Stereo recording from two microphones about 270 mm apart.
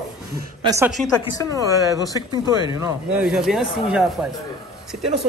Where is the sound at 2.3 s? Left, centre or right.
Centre.